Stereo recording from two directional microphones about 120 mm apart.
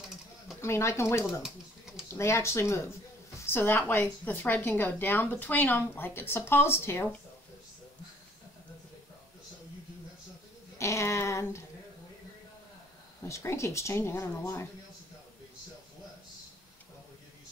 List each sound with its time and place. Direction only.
0.6 s speech: 25° left (ahead or behind)
1.4 s typewriter: 5° right (ahead or behind)
2.0 s a woman's voice: 25° left (ahead or behind)
10.8 s speech: 25° left (ahead or behind)
13.3 s speech: 20° left (ahead or behind)